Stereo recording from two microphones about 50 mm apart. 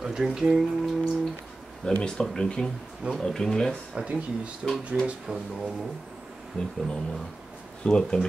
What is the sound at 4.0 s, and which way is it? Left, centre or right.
Speech, right.